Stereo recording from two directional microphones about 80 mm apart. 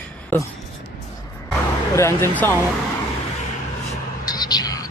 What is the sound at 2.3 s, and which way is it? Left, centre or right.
Speech, left.